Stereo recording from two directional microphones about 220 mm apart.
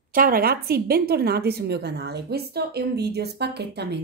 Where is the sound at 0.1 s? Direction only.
40° right (ahead or behind).